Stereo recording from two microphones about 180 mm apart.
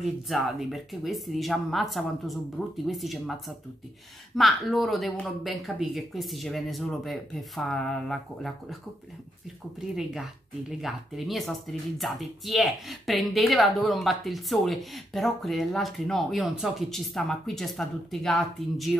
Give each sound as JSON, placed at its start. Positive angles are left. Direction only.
{"t": 0.0, "sound": "speech", "side_deg": 0}
{"t": 2.6, "sound": "speech", "side_deg": 10}
{"t": 2.9, "sound": "speech", "side_deg": 0}
{"t": 9.8, "sound": "speech", "side_deg": -5}